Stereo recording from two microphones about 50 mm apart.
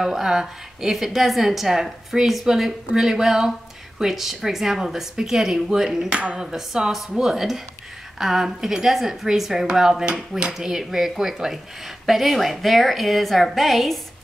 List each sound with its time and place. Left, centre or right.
0.0 s a woman's voice: centre
6.1 s speech: right
6.4 s a woman's voice: centre